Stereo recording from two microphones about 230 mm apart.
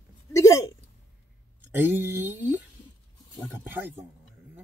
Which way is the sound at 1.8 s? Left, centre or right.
Centre.